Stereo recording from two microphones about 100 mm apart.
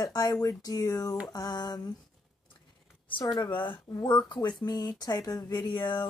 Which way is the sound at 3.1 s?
50° left (ahead or behind).